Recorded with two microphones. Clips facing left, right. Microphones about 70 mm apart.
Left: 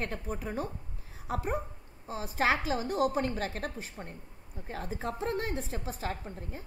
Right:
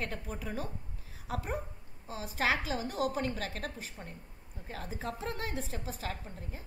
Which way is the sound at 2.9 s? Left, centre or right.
Left.